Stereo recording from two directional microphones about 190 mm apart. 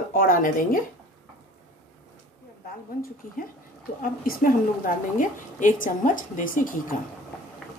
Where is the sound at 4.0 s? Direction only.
45° left (ahead or behind).